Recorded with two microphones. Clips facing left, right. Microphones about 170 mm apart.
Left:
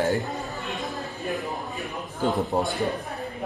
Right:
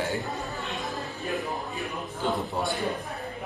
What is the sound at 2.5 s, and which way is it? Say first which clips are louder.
Speech: left 5 dB; 45° left (ahead or behind).